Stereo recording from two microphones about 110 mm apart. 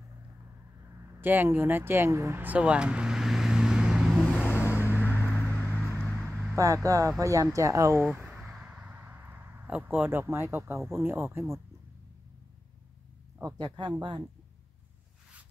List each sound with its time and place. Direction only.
1.1 s speech: 15° right (ahead or behind)
4.3 s vehicle: 15° left (ahead or behind)
6.5 s speech: 30° right (ahead or behind)
8.2 s a sound: 5° right (ahead or behind)
9.8 s speech: 20° right (ahead or behind)
13.6 s speech: 40° right (ahead or behind)